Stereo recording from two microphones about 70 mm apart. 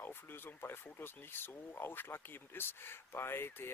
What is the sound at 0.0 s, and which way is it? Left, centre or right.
Speech, left.